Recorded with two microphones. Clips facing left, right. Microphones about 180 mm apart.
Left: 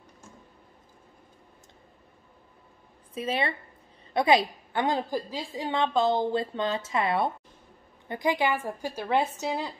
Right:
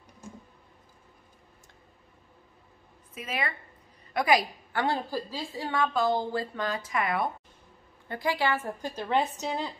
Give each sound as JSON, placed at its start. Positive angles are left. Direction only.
{"t": 3.2, "sound": "a woman's voice", "side_deg": 30}